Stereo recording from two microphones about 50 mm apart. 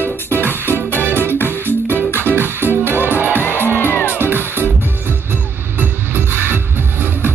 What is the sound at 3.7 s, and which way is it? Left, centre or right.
Music, left.